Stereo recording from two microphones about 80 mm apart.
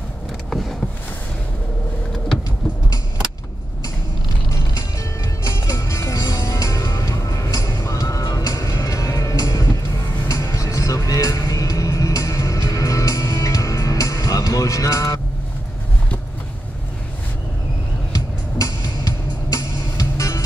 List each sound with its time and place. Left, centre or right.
0.5 s vehicle: centre
5.4 s music: left
18.1 s music: left